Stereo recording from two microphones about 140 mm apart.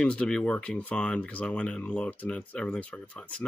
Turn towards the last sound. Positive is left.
turn(degrees=10)  # may be behind; listen again after turning